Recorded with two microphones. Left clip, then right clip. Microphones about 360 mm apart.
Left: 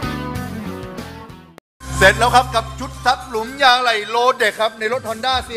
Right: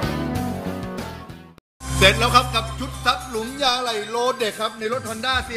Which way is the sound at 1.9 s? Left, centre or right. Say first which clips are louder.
Left 4 dB; centre.